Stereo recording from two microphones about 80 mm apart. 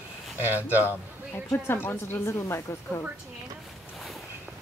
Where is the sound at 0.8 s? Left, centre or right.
Left.